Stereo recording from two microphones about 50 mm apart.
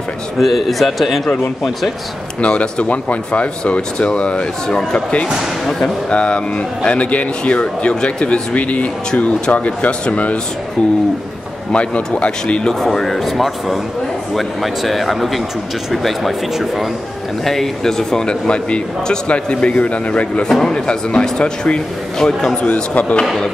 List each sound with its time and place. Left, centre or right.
0.4 s speech: centre
2.4 s speech: left
11.7 s speech: left
12.8 s speech: centre; by 20.4 s left
20.4 s speech: centre
22.6 s speech: left